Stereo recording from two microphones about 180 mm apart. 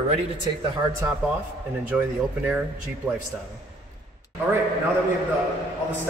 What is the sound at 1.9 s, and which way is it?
Speech, 10° right (ahead or behind).